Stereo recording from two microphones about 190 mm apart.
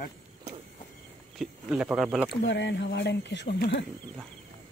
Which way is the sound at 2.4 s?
70° left (ahead or behind).